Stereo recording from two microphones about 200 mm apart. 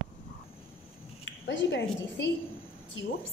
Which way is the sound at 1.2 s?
65° left (ahead or behind).